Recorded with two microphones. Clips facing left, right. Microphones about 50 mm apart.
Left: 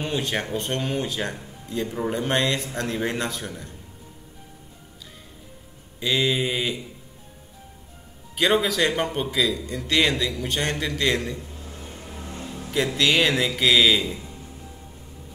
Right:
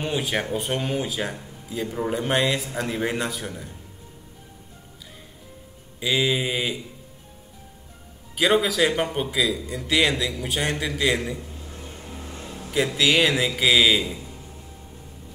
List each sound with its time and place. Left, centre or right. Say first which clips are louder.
0.0 s speech: right 1 dB; centre
5.9 s speech: even; centre
8.4 s speech: right 1 dB; centre
12.5 s speech: right 1 dB; centre